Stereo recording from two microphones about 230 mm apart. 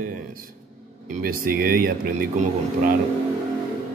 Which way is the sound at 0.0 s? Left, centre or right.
Right.